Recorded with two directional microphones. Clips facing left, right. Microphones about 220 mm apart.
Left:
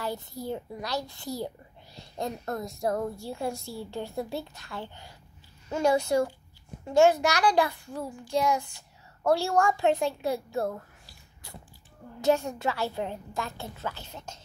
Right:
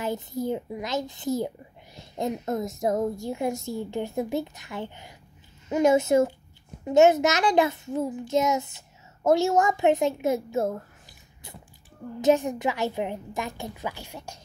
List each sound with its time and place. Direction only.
0.0 s a woman's voice: 20° right (ahead or behind)